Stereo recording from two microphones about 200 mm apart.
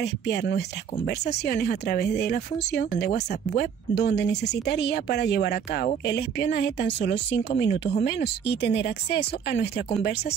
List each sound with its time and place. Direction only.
0.0 s speech: 55° left (ahead or behind)